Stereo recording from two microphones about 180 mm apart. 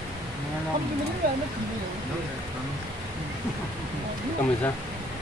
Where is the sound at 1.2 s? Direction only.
55° right (ahead or behind).